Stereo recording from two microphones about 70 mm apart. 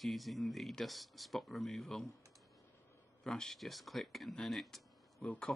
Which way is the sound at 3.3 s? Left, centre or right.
Centre.